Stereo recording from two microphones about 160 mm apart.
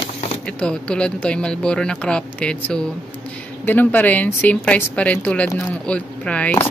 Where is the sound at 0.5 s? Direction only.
5° left (ahead or behind).